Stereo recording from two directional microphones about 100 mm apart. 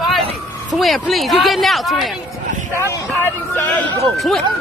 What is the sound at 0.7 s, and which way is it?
Speech, centre (ahead or behind).